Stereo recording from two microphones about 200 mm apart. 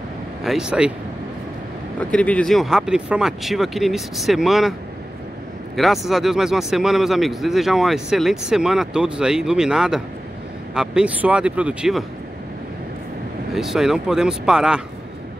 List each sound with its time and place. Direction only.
0.4 s a man's voice: centre (ahead or behind)
2.0 s a man's voice: 5° left (ahead or behind)
5.8 s a man's voice: centre (ahead or behind)
13.5 s a man's voice: centre (ahead or behind)